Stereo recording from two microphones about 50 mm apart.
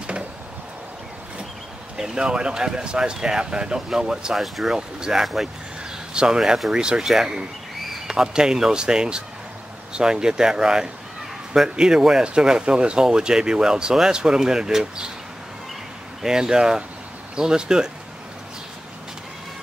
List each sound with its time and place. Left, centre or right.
2.0 s speech: centre
4.7 s speech: centre
5.2 s speech: centre
6.1 s speech: centre
16.2 s speech: centre